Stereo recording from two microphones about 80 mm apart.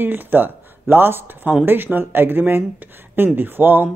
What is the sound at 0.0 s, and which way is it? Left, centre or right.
A woman's voice, right.